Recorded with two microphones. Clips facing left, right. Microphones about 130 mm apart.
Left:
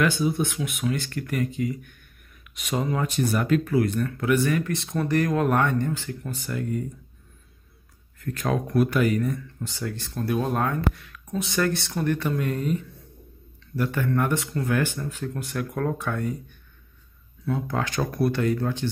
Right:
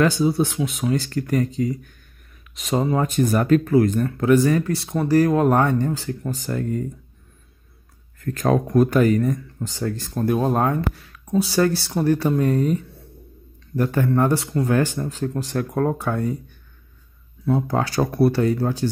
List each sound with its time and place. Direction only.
0.2 s speech: 35° right (ahead or behind)
8.2 s speech: 40° right (ahead or behind)
17.5 s speech: 35° right (ahead or behind)